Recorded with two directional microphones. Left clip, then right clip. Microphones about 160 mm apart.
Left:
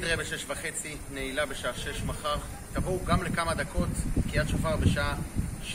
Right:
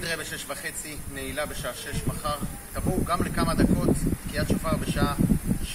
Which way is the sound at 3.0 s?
40° left (ahead or behind).